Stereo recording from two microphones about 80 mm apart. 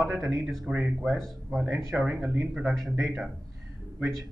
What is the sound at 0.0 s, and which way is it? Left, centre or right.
Speech, centre.